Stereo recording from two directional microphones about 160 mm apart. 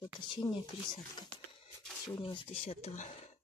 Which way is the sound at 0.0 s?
30° left (ahead or behind).